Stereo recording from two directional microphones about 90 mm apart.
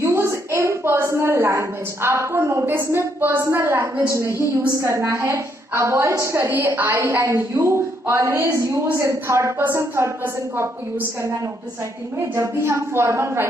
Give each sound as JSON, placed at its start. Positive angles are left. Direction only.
{"t": 0.0, "sound": "a woman's voice", "side_deg": -30}
{"t": 12.4, "sound": "a woman's voice", "side_deg": -30}